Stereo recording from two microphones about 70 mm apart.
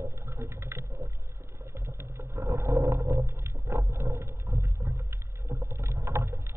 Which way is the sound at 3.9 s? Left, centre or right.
Right.